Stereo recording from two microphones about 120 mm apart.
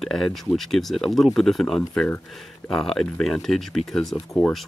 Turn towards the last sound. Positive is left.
turn(degrees=5)  # may be behind; listen again after turning